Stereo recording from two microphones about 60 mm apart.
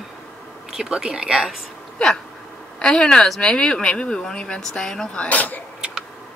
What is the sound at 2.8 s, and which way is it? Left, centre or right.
Speech, centre.